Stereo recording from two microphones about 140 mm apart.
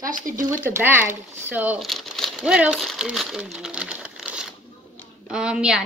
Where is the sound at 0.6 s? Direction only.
15° right (ahead or behind).